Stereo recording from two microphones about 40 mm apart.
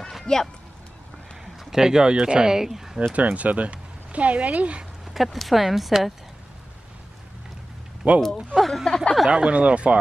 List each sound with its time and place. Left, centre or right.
0.2 s a sound: centre
1.6 s speech: centre
3.0 s speech: right
5.0 s speech: centre
8.0 s speech: right
8.5 s speech: centre
8.8 s speech: centre
9.3 s speech: right